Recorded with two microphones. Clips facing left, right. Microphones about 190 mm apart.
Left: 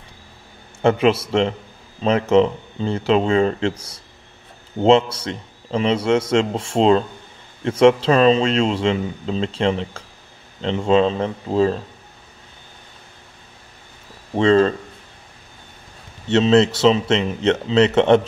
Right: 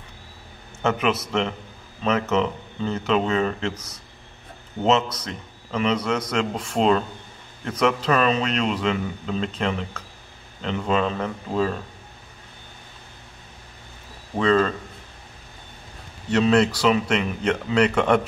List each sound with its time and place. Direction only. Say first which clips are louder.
0.8 s a man's voice: left 6 dB; 30° left (ahead or behind)
14.3 s a man's voice: left 5 dB; 30° left (ahead or behind)
16.3 s a man's voice: left 4 dB; 25° left (ahead or behind)